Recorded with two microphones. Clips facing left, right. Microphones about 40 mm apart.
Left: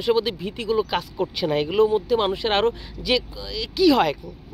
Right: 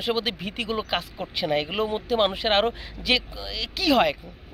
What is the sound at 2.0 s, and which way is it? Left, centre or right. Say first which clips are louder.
Speech: left 2 dB; right.